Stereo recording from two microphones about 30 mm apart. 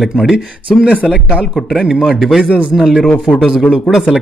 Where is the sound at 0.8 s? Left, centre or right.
Right.